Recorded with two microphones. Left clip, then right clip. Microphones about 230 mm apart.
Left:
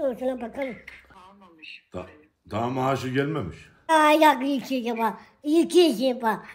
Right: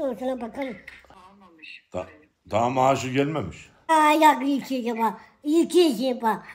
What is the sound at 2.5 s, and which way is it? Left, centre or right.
Speech, centre.